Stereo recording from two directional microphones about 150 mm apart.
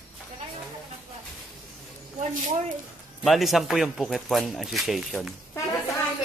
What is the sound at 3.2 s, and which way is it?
Speech, centre (ahead or behind).